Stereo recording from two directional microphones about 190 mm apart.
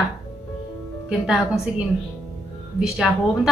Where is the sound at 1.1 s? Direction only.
5° right (ahead or behind).